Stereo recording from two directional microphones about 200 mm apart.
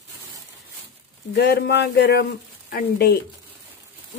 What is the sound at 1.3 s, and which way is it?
Speech, 55° left (ahead or behind).